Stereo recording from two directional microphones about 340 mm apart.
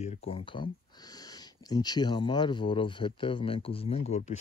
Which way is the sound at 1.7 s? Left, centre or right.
Centre.